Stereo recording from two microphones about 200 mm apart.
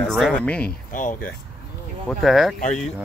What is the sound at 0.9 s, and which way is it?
Speech, 40° left (ahead or behind).